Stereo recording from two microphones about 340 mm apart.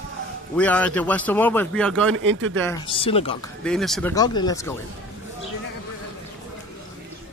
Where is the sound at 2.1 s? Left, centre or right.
Right.